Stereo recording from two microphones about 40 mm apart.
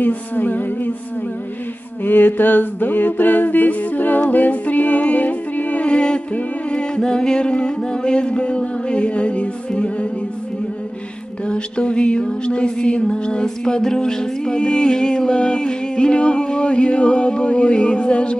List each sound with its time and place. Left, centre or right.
0.0 s a capella: left
2.0 s a capella: left
5.9 s music: left
11.4 s music: left